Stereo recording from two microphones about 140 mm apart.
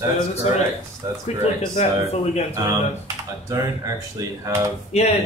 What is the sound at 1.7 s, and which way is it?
Speech, 50° left (ahead or behind).